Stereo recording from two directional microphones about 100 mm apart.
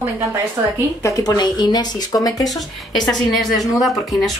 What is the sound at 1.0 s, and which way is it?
Speech, 40° left (ahead or behind).